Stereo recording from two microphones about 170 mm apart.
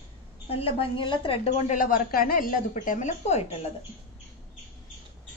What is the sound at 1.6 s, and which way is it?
Speech, 55° left (ahead or behind).